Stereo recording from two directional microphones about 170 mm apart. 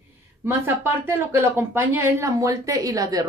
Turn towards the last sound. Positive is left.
turn(degrees=-20)  # may be behind; listen again after turning